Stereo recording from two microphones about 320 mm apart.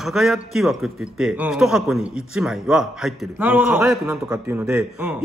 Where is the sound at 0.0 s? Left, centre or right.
Centre.